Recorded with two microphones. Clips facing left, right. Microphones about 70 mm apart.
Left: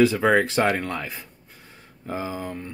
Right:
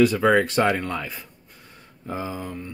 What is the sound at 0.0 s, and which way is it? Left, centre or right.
Speech, centre.